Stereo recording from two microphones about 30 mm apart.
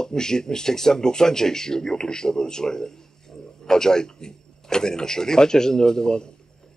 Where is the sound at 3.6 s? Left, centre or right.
Centre.